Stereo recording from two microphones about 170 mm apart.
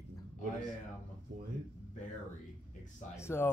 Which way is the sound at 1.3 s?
55° right (ahead or behind).